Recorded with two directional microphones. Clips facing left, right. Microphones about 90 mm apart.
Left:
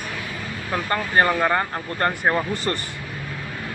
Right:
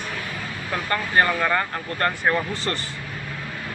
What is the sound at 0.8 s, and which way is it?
Speech, 25° left (ahead or behind).